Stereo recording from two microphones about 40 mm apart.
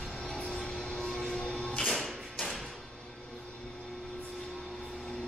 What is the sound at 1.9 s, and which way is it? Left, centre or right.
Music, centre.